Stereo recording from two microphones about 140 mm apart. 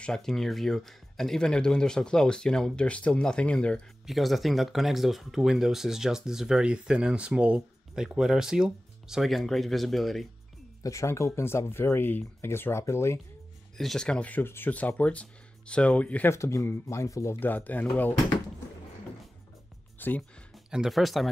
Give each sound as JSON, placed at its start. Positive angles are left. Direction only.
{"t": 0.0, "sound": "speech", "side_deg": 5}
{"t": 10.8, "sound": "speech", "side_deg": 20}
{"t": 13.7, "sound": "speech", "side_deg": 5}
{"t": 20.0, "sound": "speech", "side_deg": 10}
{"t": 20.7, "sound": "speech", "side_deg": 0}